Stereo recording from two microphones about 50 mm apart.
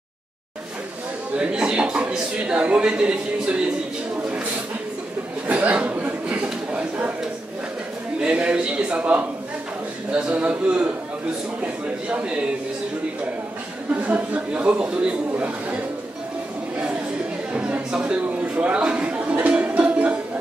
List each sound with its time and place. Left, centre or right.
1.3 s a man's voice: centre
5.5 s a sound: right
8.2 s a man's voice: right
10.1 s a man's voice: right
14.0 s a man's voice: right
17.5 s a sound: right
17.9 s speech: centre
18.6 s music: right